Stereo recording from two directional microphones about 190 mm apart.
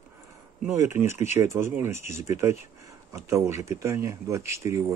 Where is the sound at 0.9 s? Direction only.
15° right (ahead or behind).